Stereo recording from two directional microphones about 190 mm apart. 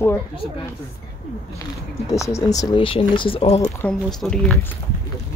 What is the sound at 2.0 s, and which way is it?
Speech, 15° left (ahead or behind).